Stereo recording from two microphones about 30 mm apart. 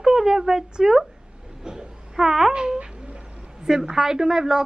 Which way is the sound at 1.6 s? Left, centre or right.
Right.